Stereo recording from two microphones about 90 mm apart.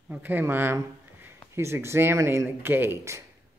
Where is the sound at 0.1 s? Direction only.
20° right (ahead or behind).